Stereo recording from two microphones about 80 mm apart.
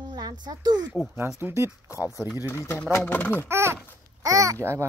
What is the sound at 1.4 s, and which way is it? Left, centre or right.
Speech, right.